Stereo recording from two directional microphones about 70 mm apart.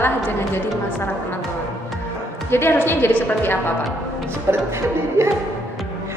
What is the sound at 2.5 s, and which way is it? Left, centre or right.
A woman's voice, left.